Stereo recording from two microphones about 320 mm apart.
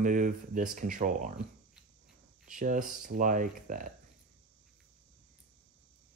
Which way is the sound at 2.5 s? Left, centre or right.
Right.